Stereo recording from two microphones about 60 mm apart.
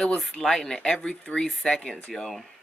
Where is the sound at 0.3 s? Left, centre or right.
Centre.